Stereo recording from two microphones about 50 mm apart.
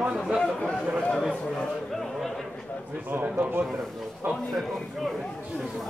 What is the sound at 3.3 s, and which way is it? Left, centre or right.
Speech, right.